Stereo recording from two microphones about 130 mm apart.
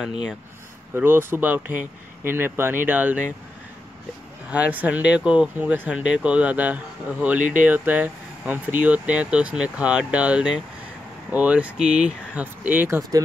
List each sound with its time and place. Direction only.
0.0 s speech: 5° right (ahead or behind)
0.9 s speech: 15° right (ahead or behind)
4.5 s speech: 10° right (ahead or behind)